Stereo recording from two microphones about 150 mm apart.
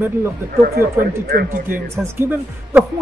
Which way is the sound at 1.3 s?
70° right (ahead or behind).